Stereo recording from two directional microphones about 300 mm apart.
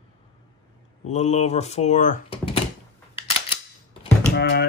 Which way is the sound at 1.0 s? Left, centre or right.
Left.